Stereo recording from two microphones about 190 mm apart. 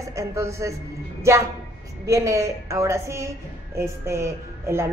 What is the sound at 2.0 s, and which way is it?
A woman's voice, 15° right (ahead or behind).